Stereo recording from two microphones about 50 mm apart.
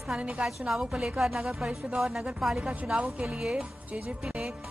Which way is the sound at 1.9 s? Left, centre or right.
Centre.